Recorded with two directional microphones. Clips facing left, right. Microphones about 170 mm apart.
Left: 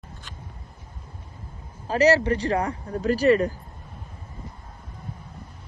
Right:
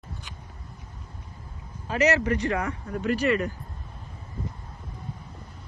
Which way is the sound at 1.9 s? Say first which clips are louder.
Left 4 dB; 35° left (ahead or behind).